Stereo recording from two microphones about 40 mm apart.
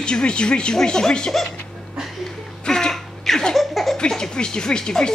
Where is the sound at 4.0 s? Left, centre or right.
Centre.